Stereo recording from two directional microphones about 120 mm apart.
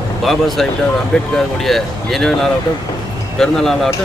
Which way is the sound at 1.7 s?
Centre (ahead or behind).